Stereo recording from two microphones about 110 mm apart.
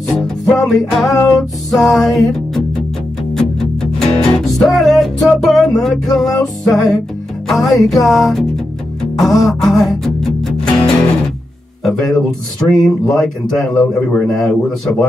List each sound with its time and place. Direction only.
0.1 s music: centre (ahead or behind)
1.1 s music: 30° left (ahead or behind)
1.7 s music: centre (ahead or behind)
6.1 s speech: centre (ahead or behind)
9.4 s music: centre (ahead or behind)
11.8 s speech: centre (ahead or behind)